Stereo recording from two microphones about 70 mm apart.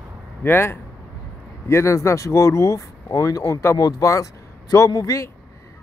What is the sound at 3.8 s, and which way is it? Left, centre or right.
Speech, left.